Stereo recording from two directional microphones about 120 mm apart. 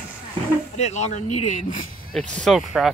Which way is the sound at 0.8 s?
75° left (ahead or behind).